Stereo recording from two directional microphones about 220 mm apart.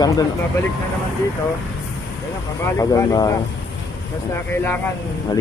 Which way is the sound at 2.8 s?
15° left (ahead or behind).